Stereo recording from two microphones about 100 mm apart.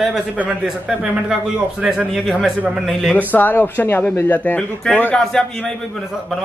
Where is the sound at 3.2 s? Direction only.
15° left (ahead or behind).